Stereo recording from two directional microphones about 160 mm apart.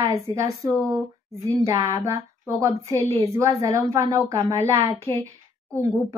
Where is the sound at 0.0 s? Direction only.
20° right (ahead or behind).